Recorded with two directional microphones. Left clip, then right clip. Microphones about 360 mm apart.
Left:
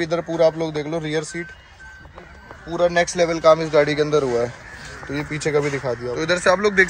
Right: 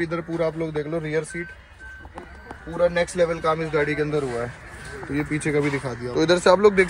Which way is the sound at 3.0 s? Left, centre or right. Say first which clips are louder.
Left 3 dB; centre.